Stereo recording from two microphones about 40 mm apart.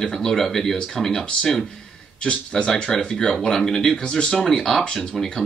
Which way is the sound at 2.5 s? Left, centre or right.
Centre.